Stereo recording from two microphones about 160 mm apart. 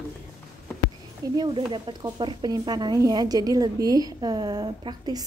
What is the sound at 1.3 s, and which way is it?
Speech, 30° right (ahead or behind).